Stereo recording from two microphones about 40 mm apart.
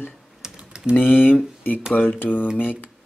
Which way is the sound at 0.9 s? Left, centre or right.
Left.